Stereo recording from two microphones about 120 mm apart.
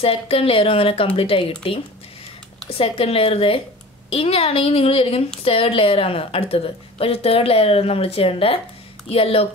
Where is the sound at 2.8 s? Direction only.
55° left (ahead or behind).